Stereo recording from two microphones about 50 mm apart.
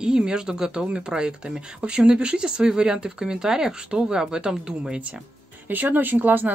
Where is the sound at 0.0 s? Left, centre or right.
Centre.